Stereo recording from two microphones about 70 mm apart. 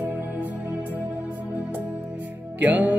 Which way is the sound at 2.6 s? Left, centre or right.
Right.